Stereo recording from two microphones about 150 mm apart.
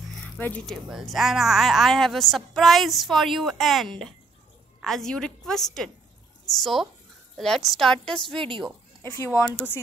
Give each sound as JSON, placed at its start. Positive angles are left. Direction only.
{"t": 0.4, "sound": "speech", "side_deg": 10}
{"t": 0.8, "sound": "a woman's voice", "side_deg": 0}
{"t": 8.4, "sound": "speech", "side_deg": -35}
{"t": 9.0, "sound": "speech", "side_deg": 15}